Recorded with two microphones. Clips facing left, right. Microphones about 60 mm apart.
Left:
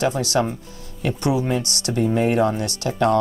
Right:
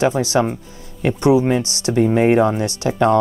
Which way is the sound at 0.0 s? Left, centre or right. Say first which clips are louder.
Right 4 dB; right.